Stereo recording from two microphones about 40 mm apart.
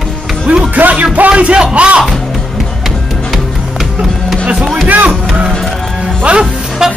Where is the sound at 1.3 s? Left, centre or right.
Right.